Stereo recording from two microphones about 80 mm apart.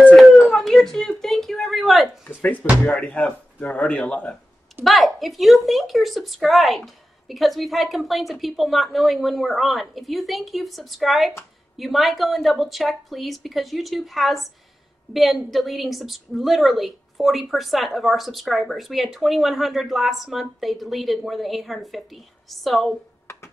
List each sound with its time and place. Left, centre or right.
0.5 s a sound: centre
2.2 s music: left
3.0 s a woman's voice: centre
15.5 s a woman's voice: centre